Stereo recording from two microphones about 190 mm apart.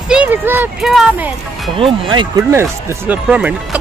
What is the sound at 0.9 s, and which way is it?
Speech, 5° right (ahead or behind).